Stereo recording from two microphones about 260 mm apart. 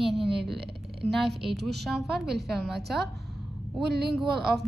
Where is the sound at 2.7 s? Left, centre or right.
Right.